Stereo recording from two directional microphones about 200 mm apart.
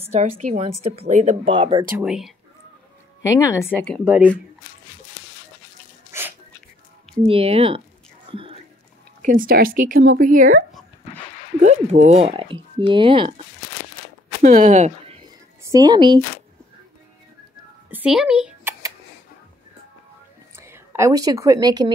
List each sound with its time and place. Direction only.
0.0 s a woman's voice: 30° right (ahead or behind)
1.5 s speech: 25° right (ahead or behind)
2.0 s speech: centre (ahead or behind)
3.2 s speech: 15° left (ahead or behind)
3.7 s speech: 5° left (ahead or behind)
6.1 s sneeze: 15° right (ahead or behind)
7.2 s speech: 30° right (ahead or behind)
8.3 s whispering: 25° right (ahead or behind)
9.2 s speech: 45° right (ahead or behind)
11.6 s speech: 35° right (ahead or behind)
14.4 s speech: 35° right (ahead or behind)
15.6 s speech: 15° right (ahead or behind)
17.8 s a sound: 5° right (ahead or behind)
20.5 s a woman's voice: 10° right (ahead or behind)